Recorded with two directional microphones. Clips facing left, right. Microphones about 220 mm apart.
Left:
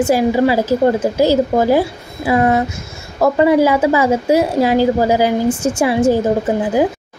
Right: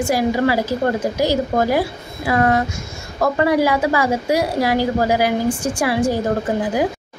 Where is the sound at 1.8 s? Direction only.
15° left (ahead or behind).